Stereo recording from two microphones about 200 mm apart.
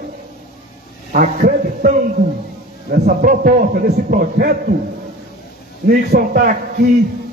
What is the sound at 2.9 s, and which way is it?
A man's voice, 45° right (ahead or behind).